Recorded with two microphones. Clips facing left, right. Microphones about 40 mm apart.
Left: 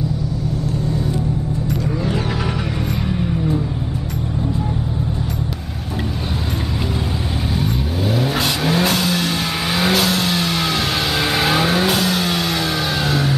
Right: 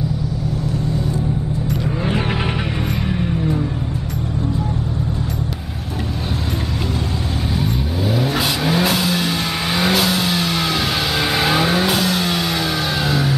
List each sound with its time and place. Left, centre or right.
3.1 s music: centre
7.5 s vehicle: centre